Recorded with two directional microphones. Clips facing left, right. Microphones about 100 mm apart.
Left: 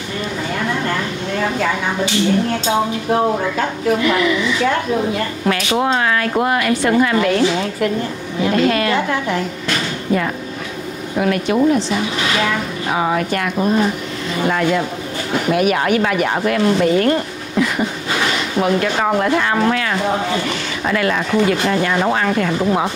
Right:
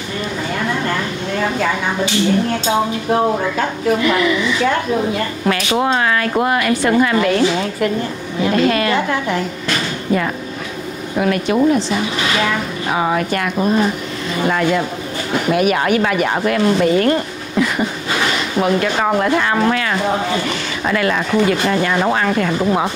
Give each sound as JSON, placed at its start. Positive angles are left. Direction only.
{"t": 0.5, "sound": "a woman's voice", "side_deg": -25}